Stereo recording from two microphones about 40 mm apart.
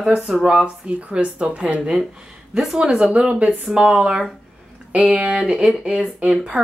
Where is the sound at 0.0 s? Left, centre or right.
Right.